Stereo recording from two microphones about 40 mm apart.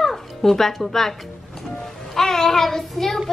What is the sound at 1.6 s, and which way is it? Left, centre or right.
A child's voice, centre.